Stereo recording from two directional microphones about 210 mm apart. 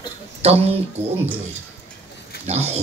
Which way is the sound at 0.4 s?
30° right (ahead or behind).